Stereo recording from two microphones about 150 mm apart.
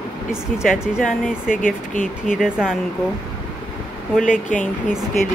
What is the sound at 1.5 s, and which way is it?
Speech, 65° left (ahead or behind).